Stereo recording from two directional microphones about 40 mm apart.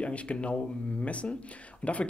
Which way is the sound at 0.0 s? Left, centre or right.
Left.